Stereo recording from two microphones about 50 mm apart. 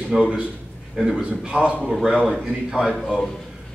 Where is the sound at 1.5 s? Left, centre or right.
Right.